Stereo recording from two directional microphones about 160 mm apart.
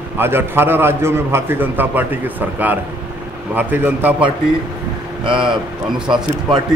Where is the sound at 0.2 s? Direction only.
15° right (ahead or behind).